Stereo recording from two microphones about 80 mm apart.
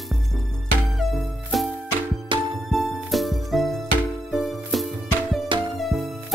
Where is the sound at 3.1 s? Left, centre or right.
Centre.